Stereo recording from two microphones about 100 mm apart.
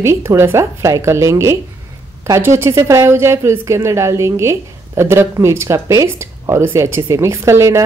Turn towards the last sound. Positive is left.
turn(degrees=-30)  # may be behind; listen again after turning